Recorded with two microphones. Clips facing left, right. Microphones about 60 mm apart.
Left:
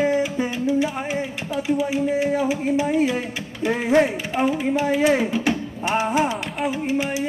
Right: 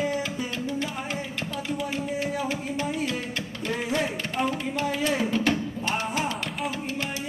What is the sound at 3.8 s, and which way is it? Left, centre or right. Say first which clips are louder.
Speech: left 11 dB; left.